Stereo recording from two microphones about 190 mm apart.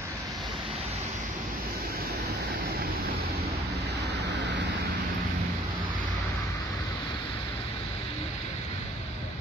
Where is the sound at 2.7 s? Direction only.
55° right (ahead or behind).